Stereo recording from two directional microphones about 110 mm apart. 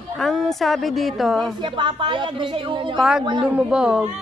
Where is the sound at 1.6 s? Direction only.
45° right (ahead or behind).